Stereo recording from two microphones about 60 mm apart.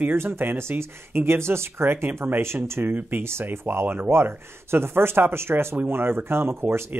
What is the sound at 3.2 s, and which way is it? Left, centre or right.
Speech, right.